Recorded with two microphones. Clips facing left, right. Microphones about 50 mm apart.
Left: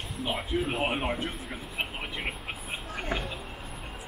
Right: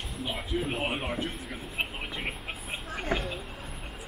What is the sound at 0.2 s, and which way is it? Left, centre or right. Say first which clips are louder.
Speech: left 2 dB; centre.